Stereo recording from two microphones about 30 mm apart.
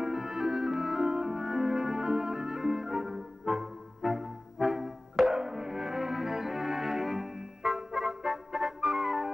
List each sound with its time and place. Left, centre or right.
0.1 s music: centre